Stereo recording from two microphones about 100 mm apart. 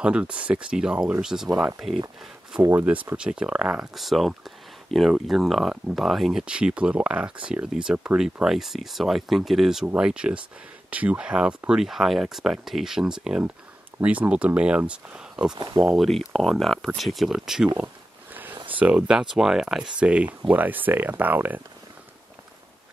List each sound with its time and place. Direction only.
0.0 s speech: 10° right (ahead or behind)
2.7 s speech: 15° right (ahead or behind)
15.5 s speech: 45° right (ahead or behind)
15.8 s speech: 5° right (ahead or behind)
18.3 s a sound: 20° right (ahead or behind)
18.8 s speech: 10° right (ahead or behind)